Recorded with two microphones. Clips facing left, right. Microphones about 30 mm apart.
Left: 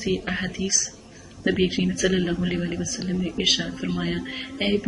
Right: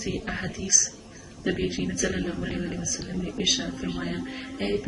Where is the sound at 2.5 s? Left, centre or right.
Left.